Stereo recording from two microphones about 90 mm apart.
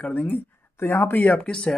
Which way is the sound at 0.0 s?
20° left (ahead or behind).